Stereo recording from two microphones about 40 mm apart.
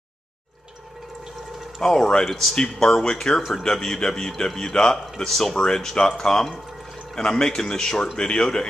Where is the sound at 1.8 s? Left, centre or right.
Centre.